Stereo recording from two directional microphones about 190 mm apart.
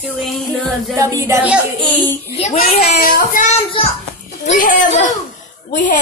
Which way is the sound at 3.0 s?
45° left (ahead or behind).